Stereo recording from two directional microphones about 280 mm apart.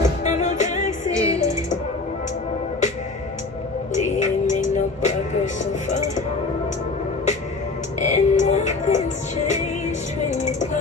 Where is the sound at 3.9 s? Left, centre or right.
Left.